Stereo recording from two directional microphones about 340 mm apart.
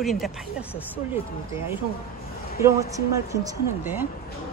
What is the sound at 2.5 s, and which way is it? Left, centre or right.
Speech, left.